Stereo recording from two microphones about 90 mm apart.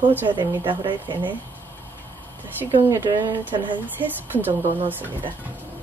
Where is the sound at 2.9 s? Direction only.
20° right (ahead or behind).